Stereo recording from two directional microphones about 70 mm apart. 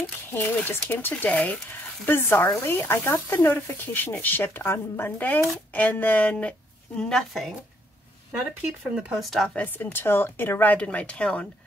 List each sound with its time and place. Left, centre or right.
0.3 s speech: left
1.7 s speech: left
7.0 s a woman's voice: centre
8.3 s speech: centre
9.2 s a woman's voice: centre
9.6 s speech: left